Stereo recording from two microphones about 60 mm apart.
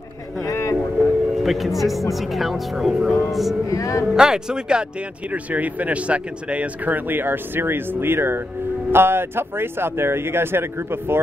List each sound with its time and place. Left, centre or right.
0.4 s a sound: left
1.3 s speech: centre
3.6 s speech: left
4.1 s speech: centre
5.3 s speech: right